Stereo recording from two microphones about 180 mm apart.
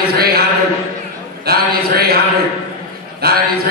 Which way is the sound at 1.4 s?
60° right (ahead or behind).